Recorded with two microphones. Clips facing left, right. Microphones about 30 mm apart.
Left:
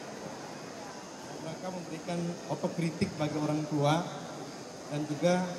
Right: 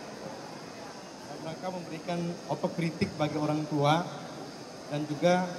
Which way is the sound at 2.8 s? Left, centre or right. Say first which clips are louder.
Right 2 dB; right.